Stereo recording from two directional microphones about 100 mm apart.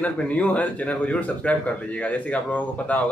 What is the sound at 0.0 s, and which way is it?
A man's voice, 15° left (ahead or behind).